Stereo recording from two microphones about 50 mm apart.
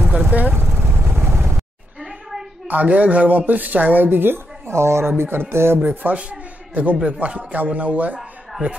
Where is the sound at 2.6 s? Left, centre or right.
Right.